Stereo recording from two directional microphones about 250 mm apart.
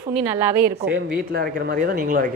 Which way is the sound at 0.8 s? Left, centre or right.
Right.